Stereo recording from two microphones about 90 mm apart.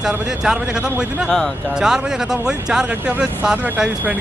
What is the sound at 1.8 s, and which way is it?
Speech, 5° right (ahead or behind).